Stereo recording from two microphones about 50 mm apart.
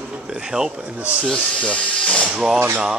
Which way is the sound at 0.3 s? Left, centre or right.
Centre.